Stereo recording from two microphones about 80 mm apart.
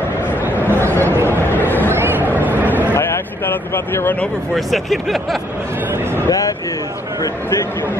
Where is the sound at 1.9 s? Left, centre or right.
Right.